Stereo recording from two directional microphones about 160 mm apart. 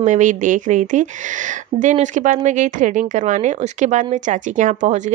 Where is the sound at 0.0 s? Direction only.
50° right (ahead or behind).